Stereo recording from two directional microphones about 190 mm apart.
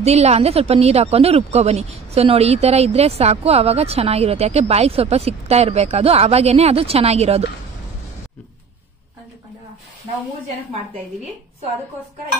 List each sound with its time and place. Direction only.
0.0 s a woman's voice: 35° right (ahead or behind)